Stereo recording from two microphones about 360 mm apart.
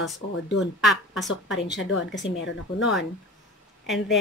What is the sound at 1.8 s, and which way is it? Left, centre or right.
Speech, left.